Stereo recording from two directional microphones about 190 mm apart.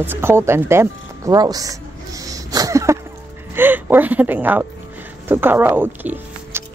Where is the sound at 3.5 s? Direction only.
10° right (ahead or behind).